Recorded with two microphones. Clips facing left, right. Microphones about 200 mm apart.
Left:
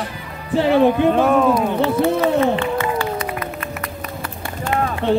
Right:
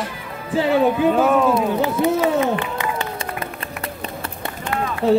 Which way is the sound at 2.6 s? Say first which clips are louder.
Left 5 dB; 15° right (ahead or behind).